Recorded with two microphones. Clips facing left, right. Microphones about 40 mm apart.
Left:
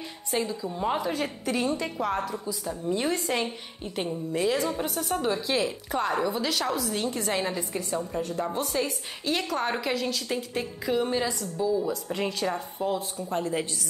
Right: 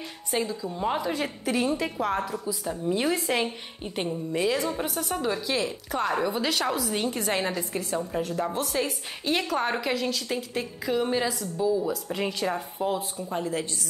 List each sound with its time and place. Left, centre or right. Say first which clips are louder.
0.3 s a woman's voice: even; centre
0.6 s a woman's voice: even; centre
4.4 s a woman's voice: even; centre
5.5 s a woman's voice: left 1 dB; centre
8.2 s a woman's voice: right 1 dB; centre